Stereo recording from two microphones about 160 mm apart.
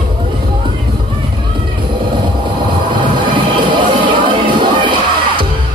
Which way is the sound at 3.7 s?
30° right (ahead or behind).